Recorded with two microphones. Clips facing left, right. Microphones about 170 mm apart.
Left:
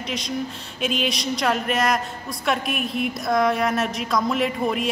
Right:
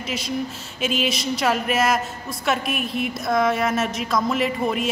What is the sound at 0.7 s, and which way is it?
A woman's voice, centre (ahead or behind).